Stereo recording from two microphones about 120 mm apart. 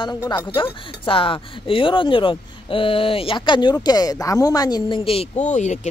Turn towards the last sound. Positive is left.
turn(degrees=75)  # may be behind; listen again after turning